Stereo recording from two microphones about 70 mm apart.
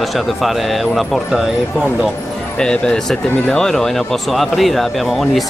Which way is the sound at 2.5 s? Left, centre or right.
Centre.